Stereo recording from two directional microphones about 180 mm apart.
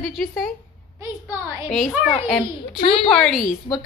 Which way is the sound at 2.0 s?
35° left (ahead or behind).